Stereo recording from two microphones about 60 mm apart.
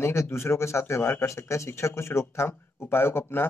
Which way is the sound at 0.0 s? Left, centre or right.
Left.